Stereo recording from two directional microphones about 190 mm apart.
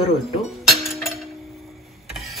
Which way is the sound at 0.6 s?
Centre (ahead or behind).